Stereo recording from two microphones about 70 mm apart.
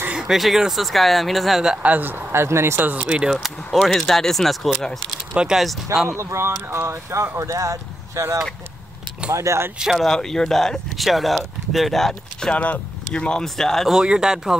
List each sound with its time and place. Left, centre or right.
0.1 s speech: centre
1.9 s speech: right
3.0 s speech: centre
3.8 s speech: centre
5.3 s speech: centre
6.0 s speech: right
9.9 s speech: centre
12.6 s speech: centre
13.9 s speech: centre